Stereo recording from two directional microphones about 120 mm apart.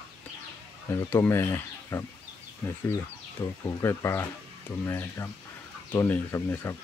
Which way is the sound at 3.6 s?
20° left (ahead or behind).